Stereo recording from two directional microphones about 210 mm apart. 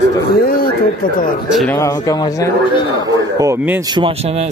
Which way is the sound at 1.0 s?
45° left (ahead or behind).